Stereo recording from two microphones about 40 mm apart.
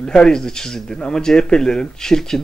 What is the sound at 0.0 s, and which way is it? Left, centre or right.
Speech, centre.